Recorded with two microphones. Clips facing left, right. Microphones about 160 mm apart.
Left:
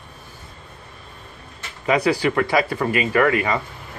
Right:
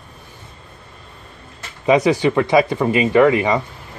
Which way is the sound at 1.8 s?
20° right (ahead or behind).